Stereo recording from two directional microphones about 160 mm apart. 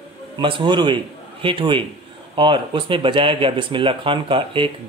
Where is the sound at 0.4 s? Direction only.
30° right (ahead or behind).